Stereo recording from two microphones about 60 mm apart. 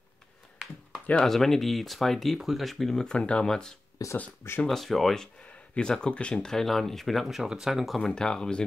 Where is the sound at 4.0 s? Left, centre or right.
Left.